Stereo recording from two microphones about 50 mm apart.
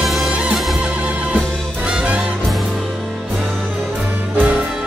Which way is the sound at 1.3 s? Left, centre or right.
Centre.